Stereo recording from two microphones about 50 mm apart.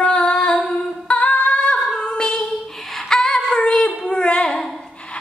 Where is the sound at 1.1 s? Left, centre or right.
Left.